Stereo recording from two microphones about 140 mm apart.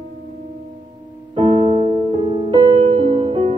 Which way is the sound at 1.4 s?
35° right (ahead or behind).